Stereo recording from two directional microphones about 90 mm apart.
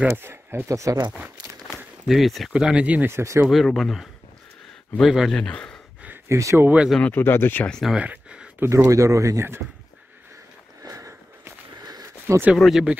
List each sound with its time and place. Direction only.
0.1 s speech: 25° right (ahead or behind)
2.0 s speech: centre (ahead or behind)
3.1 s speech: 30° right (ahead or behind)
3.4 s speech: centre (ahead or behind)
5.3 s speech: 10° left (ahead or behind)
6.2 s speech: 35° right (ahead or behind)
7.0 s speech: 25° left (ahead or behind)
7.8 s a sound: 10° right (ahead or behind)
8.5 s speech: 30° right (ahead or behind)
10.8 s a sound: 40° right (ahead or behind)
12.5 s speech: centre (ahead or behind)